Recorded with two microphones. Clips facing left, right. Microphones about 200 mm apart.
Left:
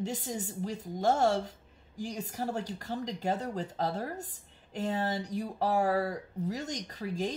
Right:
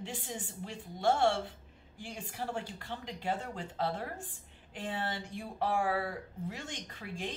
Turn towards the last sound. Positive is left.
turn(degrees=40)  # may be behind; listen again after turning